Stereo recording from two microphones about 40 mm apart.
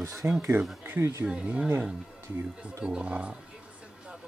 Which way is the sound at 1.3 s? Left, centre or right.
Right.